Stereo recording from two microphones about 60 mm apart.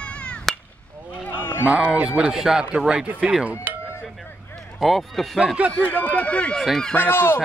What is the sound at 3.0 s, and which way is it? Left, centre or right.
Speech, right.